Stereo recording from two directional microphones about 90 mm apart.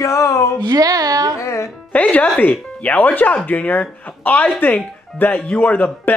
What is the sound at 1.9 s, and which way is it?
Speech, 15° left (ahead or behind).